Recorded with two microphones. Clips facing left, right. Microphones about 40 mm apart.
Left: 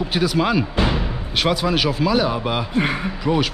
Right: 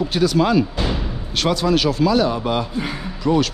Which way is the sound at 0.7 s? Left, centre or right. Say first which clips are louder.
Left 3 dB; left.